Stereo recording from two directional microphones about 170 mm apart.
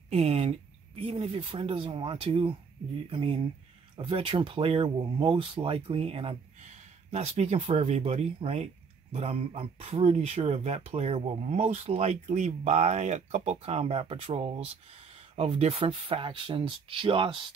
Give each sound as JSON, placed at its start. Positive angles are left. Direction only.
{"t": 0.1, "sound": "speech", "side_deg": -40}